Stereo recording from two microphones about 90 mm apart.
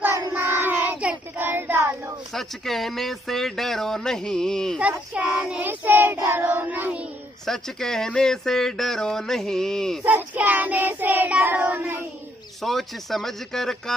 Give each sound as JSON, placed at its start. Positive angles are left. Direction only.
{"t": 0.3, "sound": "child singing", "side_deg": -25}
{"t": 2.3, "sound": "speech", "side_deg": 0}
{"t": 4.7, "sound": "a child's voice", "side_deg": -15}
{"t": 5.6, "sound": "child singing", "side_deg": -20}
{"t": 7.4, "sound": "speech", "side_deg": 5}
{"t": 10.0, "sound": "child singing", "side_deg": -20}
{"t": 12.6, "sound": "speech", "side_deg": 0}